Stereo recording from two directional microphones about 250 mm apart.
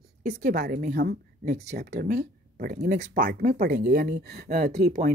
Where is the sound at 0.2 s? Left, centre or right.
Right.